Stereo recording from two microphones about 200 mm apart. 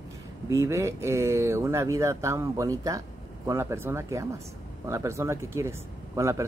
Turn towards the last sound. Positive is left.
turn(degrees=-15)  # may be behind; listen again after turning